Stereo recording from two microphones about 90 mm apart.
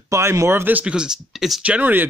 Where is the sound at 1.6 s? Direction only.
15° right (ahead or behind).